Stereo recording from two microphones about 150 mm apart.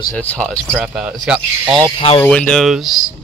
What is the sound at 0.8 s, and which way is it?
Speech, 5° right (ahead or behind).